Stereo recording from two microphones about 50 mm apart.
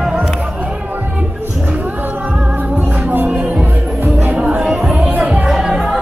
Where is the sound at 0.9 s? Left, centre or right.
Right.